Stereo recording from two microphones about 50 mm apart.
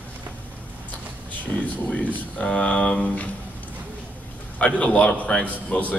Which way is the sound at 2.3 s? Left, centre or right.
Left.